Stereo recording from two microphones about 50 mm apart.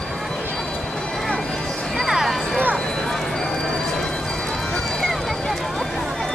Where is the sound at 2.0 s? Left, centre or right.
Centre.